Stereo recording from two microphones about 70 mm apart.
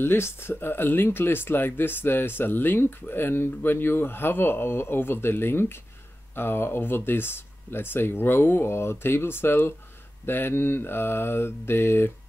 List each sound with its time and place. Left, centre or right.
0.0 s speech: left